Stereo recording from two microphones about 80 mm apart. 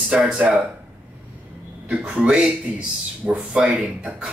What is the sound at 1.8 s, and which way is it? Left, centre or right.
Speech, centre.